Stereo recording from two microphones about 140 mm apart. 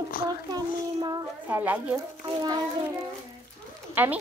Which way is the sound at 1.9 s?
25° right (ahead or behind).